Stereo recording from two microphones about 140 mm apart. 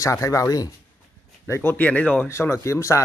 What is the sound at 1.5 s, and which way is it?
Speech, 15° left (ahead or behind).